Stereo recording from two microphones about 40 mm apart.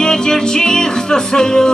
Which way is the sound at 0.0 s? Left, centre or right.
Centre.